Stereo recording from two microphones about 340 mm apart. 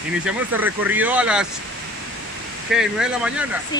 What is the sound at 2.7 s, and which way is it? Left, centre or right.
Speech, centre.